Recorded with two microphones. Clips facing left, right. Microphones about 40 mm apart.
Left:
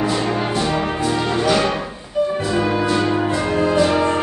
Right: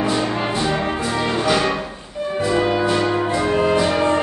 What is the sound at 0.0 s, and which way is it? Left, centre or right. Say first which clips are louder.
Music: even; centre.